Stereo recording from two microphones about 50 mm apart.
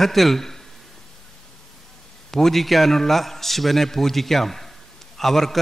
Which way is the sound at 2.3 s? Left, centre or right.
Centre.